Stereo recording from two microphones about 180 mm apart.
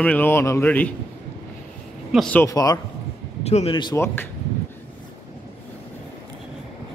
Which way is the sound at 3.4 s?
35° left (ahead or behind).